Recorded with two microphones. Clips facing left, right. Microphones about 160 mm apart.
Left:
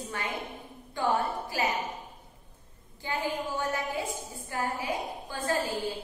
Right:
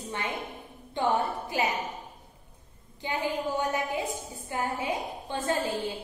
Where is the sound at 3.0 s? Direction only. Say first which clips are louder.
Right 2 dB; 20° right (ahead or behind).